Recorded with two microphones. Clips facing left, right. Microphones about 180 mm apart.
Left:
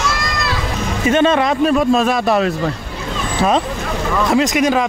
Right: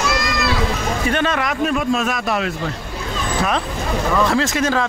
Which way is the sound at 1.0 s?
25° left (ahead or behind).